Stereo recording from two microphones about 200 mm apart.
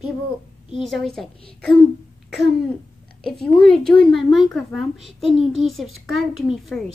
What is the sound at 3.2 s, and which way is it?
Speech, 5° left (ahead or behind).